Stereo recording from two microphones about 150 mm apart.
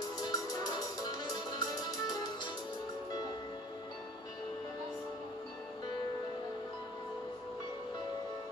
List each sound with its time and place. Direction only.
0.2 s music: 25° left (ahead or behind)